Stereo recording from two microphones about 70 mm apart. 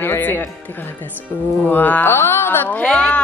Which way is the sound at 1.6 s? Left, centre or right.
Left.